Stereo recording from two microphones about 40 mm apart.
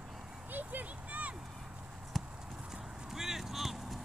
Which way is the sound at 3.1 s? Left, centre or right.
Centre.